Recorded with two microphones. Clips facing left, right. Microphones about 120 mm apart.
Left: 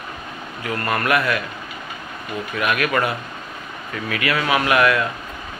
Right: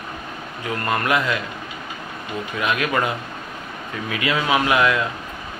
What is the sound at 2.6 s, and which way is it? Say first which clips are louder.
Speech: left 1 dB; 20° right (ahead or behind).